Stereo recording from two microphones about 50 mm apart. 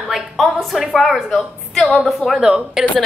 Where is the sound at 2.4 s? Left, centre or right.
Centre.